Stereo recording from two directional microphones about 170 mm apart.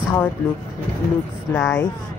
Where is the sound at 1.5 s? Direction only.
10° left (ahead or behind).